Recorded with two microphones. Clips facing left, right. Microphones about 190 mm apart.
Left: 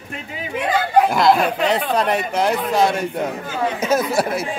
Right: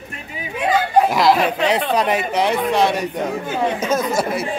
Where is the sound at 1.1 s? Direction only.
Centre (ahead or behind).